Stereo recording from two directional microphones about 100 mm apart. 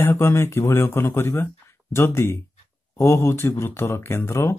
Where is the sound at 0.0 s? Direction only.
25° left (ahead or behind).